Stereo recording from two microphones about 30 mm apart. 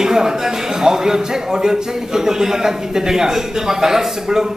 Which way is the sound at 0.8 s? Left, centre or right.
Centre.